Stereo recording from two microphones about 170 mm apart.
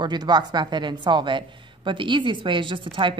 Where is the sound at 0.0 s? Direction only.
25° right (ahead or behind).